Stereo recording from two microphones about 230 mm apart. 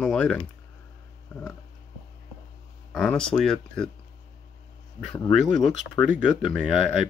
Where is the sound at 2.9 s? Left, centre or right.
Centre.